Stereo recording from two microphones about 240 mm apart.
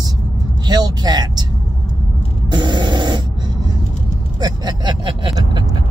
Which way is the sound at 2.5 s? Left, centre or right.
Centre.